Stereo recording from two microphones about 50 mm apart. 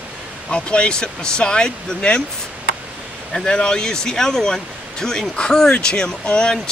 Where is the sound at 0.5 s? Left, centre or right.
Left.